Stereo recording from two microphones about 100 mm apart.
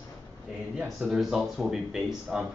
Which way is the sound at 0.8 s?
5° right (ahead or behind).